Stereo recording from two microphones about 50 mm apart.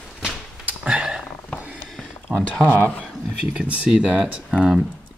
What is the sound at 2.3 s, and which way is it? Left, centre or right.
Speech, centre.